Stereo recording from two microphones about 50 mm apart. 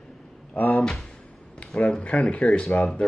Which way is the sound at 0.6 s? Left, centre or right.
Left.